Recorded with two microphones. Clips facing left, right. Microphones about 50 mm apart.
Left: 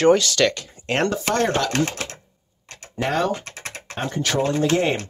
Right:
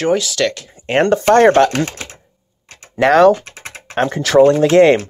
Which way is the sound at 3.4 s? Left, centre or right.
Centre.